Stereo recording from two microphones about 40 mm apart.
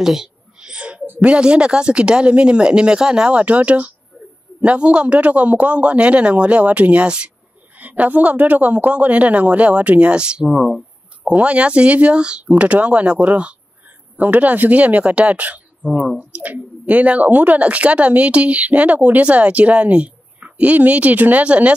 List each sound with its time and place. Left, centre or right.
0.0 s a sound: centre
0.7 s a sound: right
1.2 s speech: right
7.7 s speech: right; by 10.8 s centre
11.2 s speech: right
14.1 s speech: right